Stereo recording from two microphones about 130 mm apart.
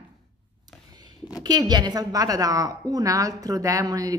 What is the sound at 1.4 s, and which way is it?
A woman's voice, 30° right (ahead or behind).